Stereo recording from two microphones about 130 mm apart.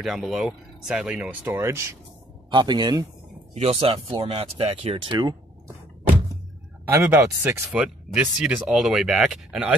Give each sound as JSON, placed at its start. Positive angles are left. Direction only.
{"t": 0.0, "sound": "speech", "side_deg": 0}
{"t": 2.5, "sound": "speech", "side_deg": -35}
{"t": 3.5, "sound": "speech", "side_deg": -50}
{"t": 6.9, "sound": "speech", "side_deg": -20}
{"t": 7.7, "sound": "speech", "side_deg": -5}